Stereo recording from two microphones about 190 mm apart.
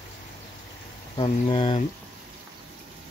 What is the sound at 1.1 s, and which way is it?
Speech, 30° left (ahead or behind).